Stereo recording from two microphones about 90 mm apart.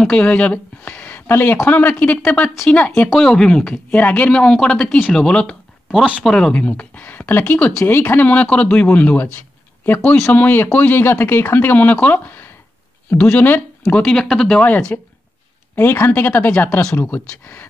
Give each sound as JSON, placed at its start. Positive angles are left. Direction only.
{"t": 0.0, "sound": "speech", "side_deg": 15}
{"t": 14.3, "sound": "speech", "side_deg": 5}
{"t": 14.9, "sound": "speech", "side_deg": 20}